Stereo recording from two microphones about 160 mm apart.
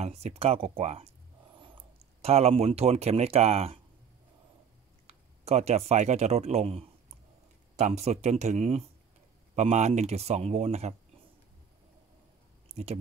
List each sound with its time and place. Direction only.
0.0 s speech: 40° right (ahead or behind)
5.0 s speech: 45° right (ahead or behind)
12.6 s speech: 40° right (ahead or behind)